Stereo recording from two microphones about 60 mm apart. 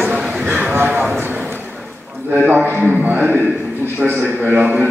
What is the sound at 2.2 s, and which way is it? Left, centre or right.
A man's voice, right.